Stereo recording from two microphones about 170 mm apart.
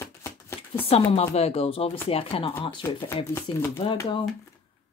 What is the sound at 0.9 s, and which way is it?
Speech, 35° left (ahead or behind).